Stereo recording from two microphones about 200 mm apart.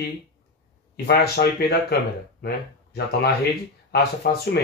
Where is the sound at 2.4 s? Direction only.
50° left (ahead or behind).